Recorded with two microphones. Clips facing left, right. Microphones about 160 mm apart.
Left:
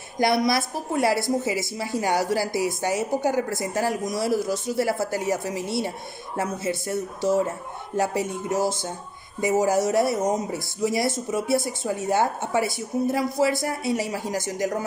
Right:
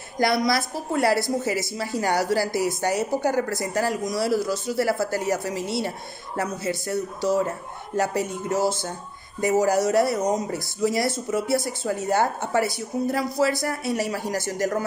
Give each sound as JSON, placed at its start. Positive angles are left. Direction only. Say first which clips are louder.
{"t": 0.2, "sound": "speech", "louder": "even", "side_deg": 20}